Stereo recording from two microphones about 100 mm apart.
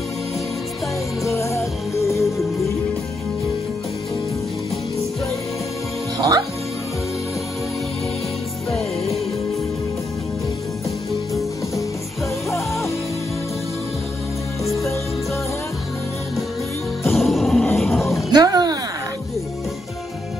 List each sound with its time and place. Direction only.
1.3 s music: 30° left (ahead or behind)
6.1 s music: 40° right (ahead or behind)
17.0 s music: centre (ahead or behind)
17.7 s roaring cats: centre (ahead or behind)
18.3 s a sound: 45° right (ahead or behind)